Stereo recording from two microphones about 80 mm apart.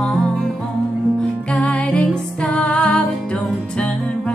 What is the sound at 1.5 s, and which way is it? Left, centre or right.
Music, centre.